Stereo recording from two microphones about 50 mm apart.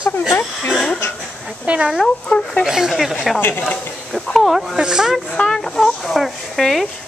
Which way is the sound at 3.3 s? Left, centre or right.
Left.